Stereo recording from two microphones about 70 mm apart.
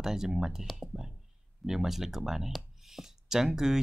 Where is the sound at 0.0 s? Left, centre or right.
Centre.